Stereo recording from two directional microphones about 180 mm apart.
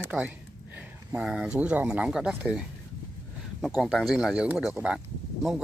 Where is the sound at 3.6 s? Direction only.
Centre (ahead or behind).